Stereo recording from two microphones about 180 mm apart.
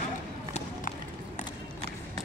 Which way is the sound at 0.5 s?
40° left (ahead or behind).